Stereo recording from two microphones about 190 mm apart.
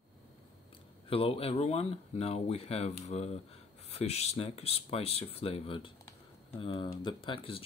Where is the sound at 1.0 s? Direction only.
30° left (ahead or behind).